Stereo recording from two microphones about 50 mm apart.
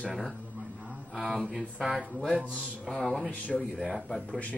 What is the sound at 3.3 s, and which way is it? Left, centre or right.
Speech, left.